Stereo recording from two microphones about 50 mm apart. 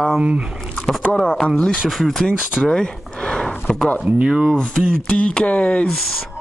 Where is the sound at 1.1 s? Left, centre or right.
Centre.